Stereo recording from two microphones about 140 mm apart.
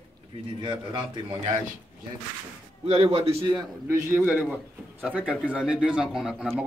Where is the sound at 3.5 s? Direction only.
20° right (ahead or behind).